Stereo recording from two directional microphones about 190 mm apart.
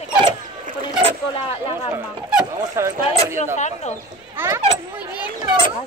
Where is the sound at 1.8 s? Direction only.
10° right (ahead or behind).